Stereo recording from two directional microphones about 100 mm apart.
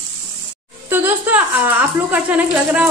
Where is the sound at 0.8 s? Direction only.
20° right (ahead or behind).